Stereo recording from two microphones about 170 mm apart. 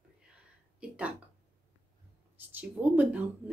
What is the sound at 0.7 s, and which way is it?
Speech, 10° right (ahead or behind).